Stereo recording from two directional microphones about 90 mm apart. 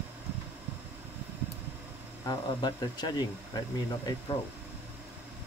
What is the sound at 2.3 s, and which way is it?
Speech, 50° left (ahead or behind).